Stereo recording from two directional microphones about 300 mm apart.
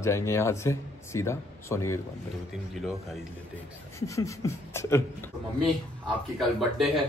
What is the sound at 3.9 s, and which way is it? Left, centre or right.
A man's voice, centre.